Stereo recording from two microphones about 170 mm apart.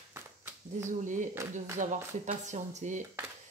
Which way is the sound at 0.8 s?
50° right (ahead or behind).